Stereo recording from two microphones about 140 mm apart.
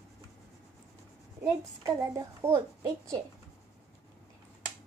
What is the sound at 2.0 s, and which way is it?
Speech, 25° right (ahead or behind).